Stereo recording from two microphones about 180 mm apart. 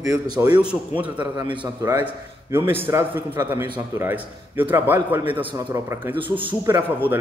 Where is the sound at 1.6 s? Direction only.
15° right (ahead or behind).